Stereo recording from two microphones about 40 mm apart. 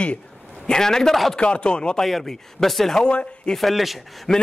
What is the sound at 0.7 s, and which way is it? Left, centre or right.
Speech, centre.